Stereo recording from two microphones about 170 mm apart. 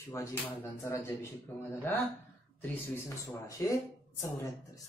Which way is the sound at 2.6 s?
15° left (ahead or behind).